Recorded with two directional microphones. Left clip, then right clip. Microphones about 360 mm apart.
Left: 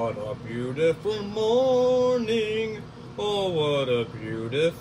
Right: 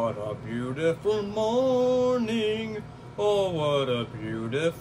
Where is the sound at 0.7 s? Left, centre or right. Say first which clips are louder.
Left 1 dB; centre.